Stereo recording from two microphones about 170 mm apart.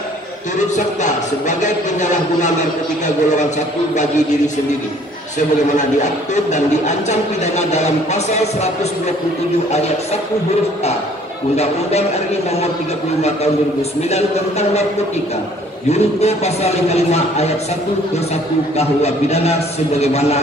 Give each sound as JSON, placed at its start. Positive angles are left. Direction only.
{"t": 0.7, "sound": "speech", "side_deg": 45}
{"t": 5.8, "sound": "speech", "side_deg": 45}
{"t": 11.5, "sound": "a man's voice", "side_deg": 40}
{"t": 14.1, "sound": "a man's voice", "side_deg": 40}
{"t": 15.9, "sound": "a man's voice", "side_deg": 40}
{"t": 18.8, "sound": "a man's voice", "side_deg": 40}